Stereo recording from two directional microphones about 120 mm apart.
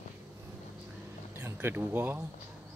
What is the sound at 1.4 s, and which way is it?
Speech, 20° right (ahead or behind).